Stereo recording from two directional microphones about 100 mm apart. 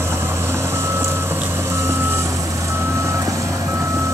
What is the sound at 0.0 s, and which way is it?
Reversing beeps, 25° right (ahead or behind).